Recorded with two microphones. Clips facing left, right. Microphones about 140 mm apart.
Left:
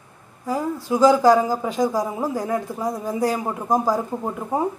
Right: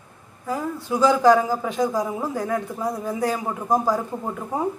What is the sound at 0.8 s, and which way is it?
A man's voice, 10° left (ahead or behind).